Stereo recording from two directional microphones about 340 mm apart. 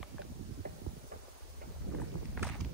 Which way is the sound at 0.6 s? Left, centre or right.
Right.